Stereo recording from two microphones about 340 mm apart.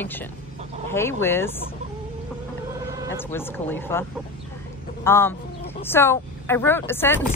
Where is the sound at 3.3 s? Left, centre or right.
Centre.